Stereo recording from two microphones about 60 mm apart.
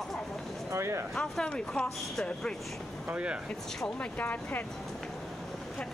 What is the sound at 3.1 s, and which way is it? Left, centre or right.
Speech, right.